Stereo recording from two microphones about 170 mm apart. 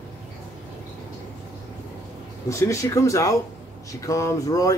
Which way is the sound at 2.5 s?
20° left (ahead or behind).